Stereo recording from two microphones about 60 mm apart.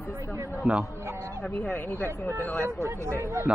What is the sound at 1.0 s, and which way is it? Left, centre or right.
Speech, right.